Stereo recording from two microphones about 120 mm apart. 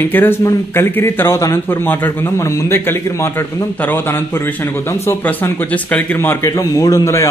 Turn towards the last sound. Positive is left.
turn(degrees=25)  # may be behind; listen again after turning